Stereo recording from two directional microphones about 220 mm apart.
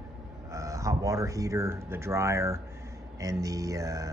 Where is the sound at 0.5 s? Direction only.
15° right (ahead or behind).